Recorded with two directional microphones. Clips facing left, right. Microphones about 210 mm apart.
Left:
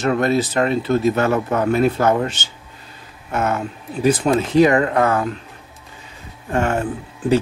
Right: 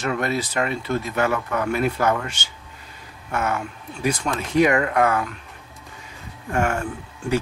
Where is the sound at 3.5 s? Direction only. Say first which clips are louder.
Left 4 dB; 35° left (ahead or behind).